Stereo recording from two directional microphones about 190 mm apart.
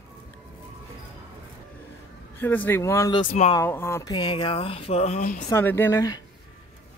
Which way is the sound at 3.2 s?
40° left (ahead or behind).